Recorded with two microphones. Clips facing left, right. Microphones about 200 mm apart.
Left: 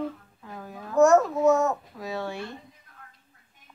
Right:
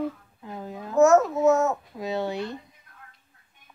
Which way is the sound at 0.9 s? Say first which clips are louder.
Right 1 dB; 5° right (ahead or behind).